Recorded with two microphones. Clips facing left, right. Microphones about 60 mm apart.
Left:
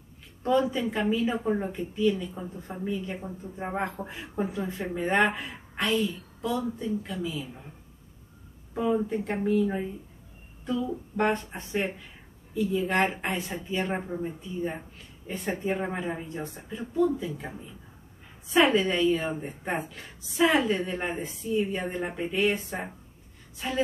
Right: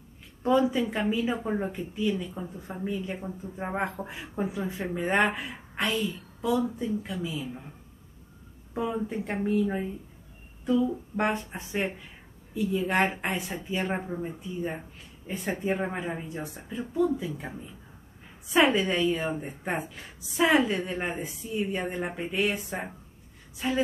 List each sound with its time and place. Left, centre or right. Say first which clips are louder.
0.4 s a woman's voice: right 1 dB; centre
7.1 s a woman's voice: even; centre
8.7 s a woman's voice: left 3 dB; centre